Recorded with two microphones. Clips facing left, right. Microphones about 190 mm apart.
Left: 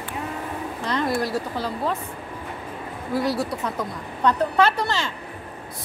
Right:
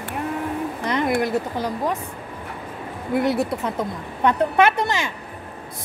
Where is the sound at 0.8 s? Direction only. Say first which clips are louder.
Right 2 dB; 20° right (ahead or behind).